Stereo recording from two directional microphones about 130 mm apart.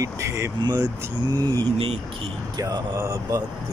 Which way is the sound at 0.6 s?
35° right (ahead or behind).